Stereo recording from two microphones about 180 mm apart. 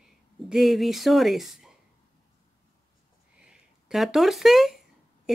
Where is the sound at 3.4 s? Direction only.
5° right (ahead or behind).